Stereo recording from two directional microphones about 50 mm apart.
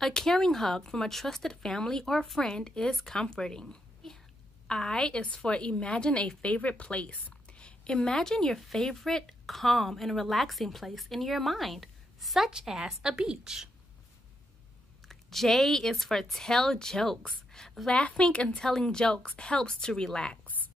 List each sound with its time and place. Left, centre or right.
0.0 s a woman's voice: centre
12.4 s a woman's voice: centre
15.0 s speech: centre
17.9 s a woman's voice: left
18.6 s speech: centre